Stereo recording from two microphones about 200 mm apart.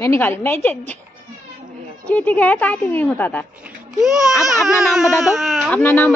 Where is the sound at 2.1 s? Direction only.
10° left (ahead or behind).